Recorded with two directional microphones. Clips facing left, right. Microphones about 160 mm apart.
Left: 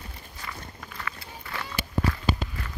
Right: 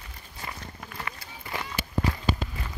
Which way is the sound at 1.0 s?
25° right (ahead or behind).